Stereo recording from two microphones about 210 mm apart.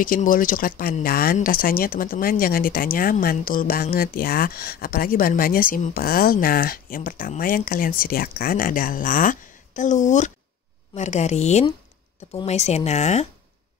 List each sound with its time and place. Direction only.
0.0 s speech: 40° left (ahead or behind)